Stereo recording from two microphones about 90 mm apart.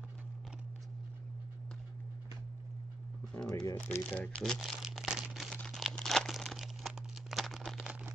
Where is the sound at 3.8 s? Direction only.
15° left (ahead or behind).